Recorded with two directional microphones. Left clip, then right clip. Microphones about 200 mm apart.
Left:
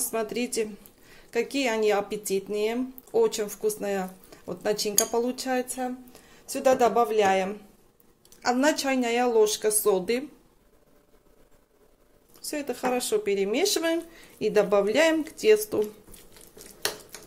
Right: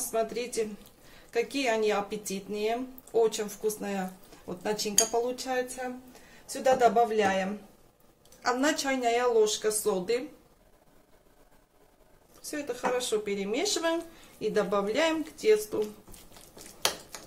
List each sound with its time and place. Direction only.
0.0 s speech: 40° left (ahead or behind)
12.4 s speech: 40° left (ahead or behind)